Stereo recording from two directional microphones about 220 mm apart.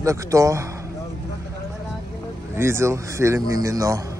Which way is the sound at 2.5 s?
10° right (ahead or behind).